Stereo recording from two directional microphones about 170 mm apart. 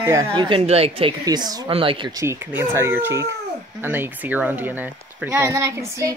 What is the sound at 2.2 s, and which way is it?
Speech, 15° right (ahead or behind).